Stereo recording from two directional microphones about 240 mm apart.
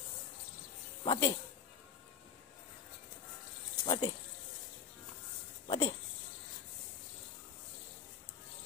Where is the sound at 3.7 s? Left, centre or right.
Centre.